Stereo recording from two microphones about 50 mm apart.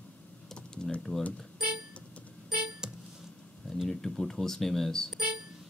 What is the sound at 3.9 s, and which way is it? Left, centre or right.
Speech, centre.